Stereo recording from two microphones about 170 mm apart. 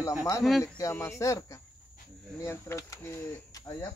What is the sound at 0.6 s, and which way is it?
Speech, 20° left (ahead or behind).